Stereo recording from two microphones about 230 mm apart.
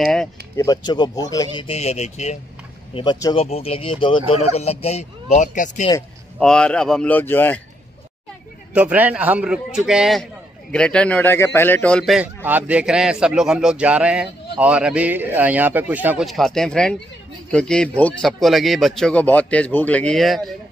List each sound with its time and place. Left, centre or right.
0.0 s speech: centre
0.6 s speech: centre; by 5.9 s left
6.4 s speech: centre
8.7 s speech: centre